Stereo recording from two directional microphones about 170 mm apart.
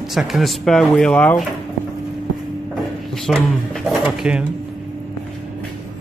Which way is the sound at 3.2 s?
Centre (ahead or behind).